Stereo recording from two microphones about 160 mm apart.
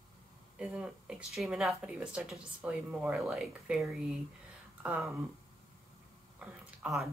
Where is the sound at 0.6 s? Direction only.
5° right (ahead or behind).